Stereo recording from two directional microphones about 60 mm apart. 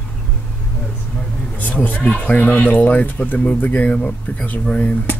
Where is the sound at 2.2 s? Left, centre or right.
Left.